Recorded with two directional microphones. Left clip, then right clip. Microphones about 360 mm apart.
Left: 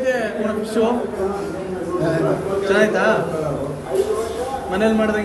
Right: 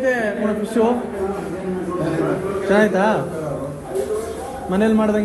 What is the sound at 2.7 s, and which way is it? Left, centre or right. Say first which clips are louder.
Speech: right 1 dB; centre.